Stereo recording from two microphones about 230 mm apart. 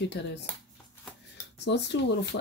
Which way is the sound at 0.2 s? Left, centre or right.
Left.